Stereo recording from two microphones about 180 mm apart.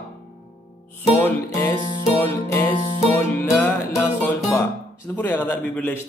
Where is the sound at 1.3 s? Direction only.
20° left (ahead or behind).